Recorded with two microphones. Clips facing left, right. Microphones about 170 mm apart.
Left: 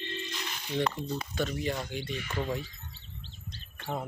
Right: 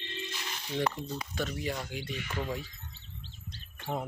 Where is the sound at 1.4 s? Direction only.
Centre (ahead or behind).